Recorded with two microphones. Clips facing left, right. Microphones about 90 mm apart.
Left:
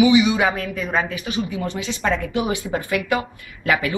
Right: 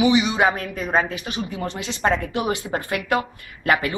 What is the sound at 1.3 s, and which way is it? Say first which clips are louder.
Speech: left 4 dB; 10° left (ahead or behind).